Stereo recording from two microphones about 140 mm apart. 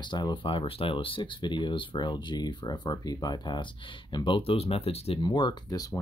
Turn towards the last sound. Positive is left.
turn(degrees=25)  # may be behind; listen again after turning